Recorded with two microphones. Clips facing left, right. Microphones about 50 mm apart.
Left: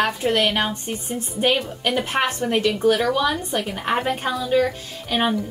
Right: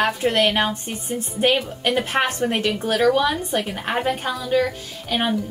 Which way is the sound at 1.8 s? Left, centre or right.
Centre.